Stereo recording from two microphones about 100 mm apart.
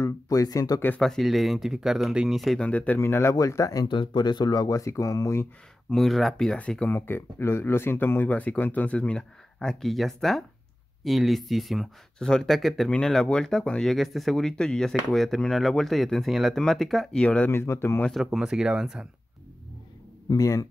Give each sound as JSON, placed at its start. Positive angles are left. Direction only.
{"t": 0.0, "sound": "speech", "side_deg": 35}
{"t": 0.7, "sound": "speech", "side_deg": 20}
{"t": 1.0, "sound": "speech", "side_deg": 0}
{"t": 2.6, "sound": "speech", "side_deg": 15}
{"t": 3.0, "sound": "speech", "side_deg": 25}
{"t": 3.8, "sound": "speech", "side_deg": 55}
{"t": 5.9, "sound": "speech", "side_deg": 5}
{"t": 7.0, "sound": "speech", "side_deg": 25}
{"t": 17.5, "sound": "speech", "side_deg": 25}
{"t": 18.1, "sound": "speech", "side_deg": -5}
{"t": 20.2, "sound": "speech", "side_deg": 35}